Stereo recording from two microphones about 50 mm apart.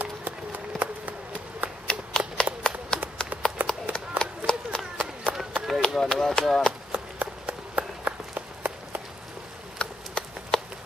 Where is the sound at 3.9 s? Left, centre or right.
Centre.